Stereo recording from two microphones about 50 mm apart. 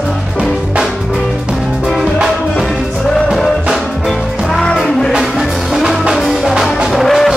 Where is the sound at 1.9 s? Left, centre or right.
Centre.